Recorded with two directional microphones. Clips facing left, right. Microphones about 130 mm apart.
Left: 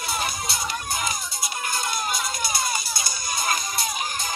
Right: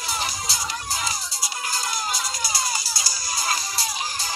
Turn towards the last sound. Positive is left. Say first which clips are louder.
# left 1 dB
turn(degrees=25)  # may be behind; listen again after turning